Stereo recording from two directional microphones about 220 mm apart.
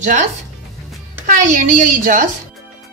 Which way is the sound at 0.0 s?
35° right (ahead or behind).